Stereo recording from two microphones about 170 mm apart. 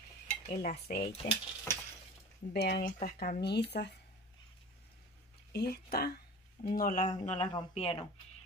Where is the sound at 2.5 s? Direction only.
85° left.